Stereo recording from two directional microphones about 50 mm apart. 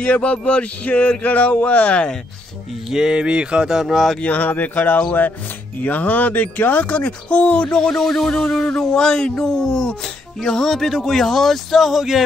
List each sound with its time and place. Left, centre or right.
0.0 s speech: left
2.9 s speech: centre
4.2 s speech: left; by 12.2 s centre